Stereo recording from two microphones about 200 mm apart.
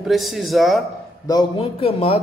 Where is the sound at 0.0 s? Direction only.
Centre (ahead or behind).